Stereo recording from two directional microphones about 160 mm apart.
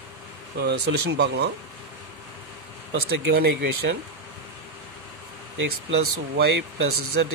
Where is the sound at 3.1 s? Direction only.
85° right.